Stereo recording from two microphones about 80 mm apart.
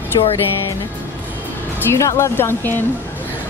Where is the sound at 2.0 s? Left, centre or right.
Left.